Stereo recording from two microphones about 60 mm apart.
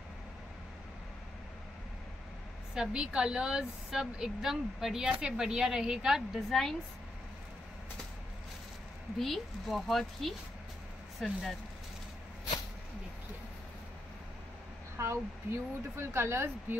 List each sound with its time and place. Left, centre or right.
2.7 s a woman's voice: centre
6.3 s speech: centre
9.2 s speech: centre
15.0 s speech: right